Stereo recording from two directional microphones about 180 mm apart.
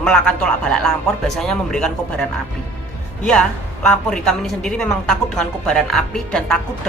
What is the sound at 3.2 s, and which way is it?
A woman's voice, 5° left (ahead or behind).